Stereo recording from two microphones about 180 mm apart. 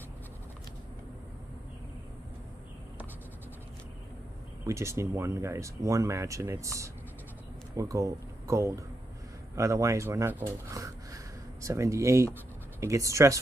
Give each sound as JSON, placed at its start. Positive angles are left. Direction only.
{"t": 4.6, "sound": "speech", "side_deg": -15}